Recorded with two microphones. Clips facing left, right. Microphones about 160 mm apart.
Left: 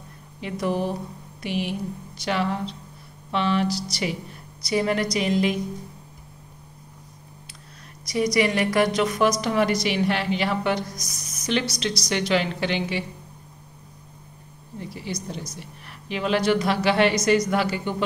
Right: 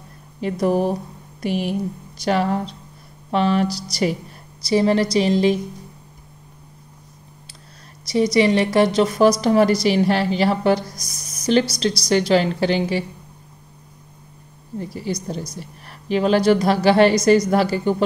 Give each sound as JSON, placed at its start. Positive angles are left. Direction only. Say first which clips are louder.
{"t": 0.4, "sound": "a woman's voice", "louder": "right 6 dB", "side_deg": -40}
{"t": 8.1, "sound": "a woman's voice", "louder": "right 5 dB", "side_deg": -25}
{"t": 14.8, "sound": "a woman's voice", "louder": "right 6 dB", "side_deg": -40}